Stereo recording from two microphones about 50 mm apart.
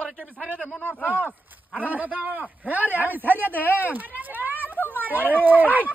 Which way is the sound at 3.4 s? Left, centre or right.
Left.